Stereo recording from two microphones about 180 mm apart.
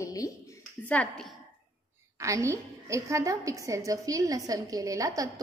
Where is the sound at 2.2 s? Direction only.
15° right (ahead or behind).